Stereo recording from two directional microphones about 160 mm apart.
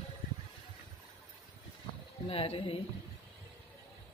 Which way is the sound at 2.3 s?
35° left (ahead or behind).